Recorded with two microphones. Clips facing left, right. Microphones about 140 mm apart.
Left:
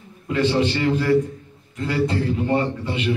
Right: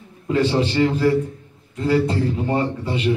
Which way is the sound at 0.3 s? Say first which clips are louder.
Right 1 dB; 35° right (ahead or behind).